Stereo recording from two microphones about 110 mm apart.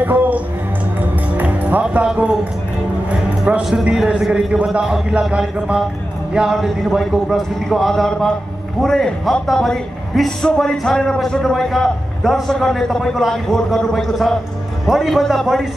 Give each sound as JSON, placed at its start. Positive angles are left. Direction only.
{"t": 0.0, "sound": "a man's voice", "side_deg": -15}
{"t": 1.3, "sound": "music", "side_deg": -15}
{"t": 3.4, "sound": "a man's voice", "side_deg": -10}